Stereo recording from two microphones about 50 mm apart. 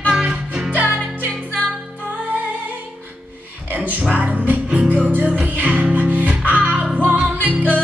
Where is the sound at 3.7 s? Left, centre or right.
Right.